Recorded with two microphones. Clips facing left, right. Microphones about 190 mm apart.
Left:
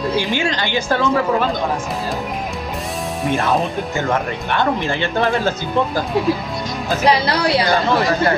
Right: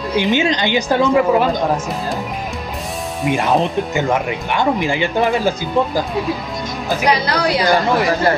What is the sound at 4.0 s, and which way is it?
Speech, 15° right (ahead or behind).